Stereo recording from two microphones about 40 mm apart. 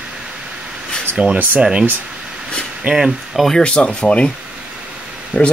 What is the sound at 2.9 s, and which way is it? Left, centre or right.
Speech, centre.